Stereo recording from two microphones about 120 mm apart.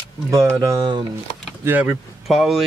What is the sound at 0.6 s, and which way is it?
Speech, 30° right (ahead or behind).